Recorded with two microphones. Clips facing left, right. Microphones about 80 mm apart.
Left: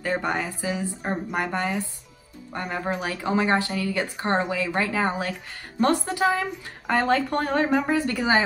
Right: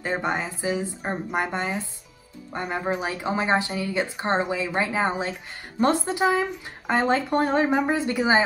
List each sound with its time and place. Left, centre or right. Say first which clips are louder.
0.0 s speech: even; centre